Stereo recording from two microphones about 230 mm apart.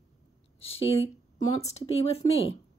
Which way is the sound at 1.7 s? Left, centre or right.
Left.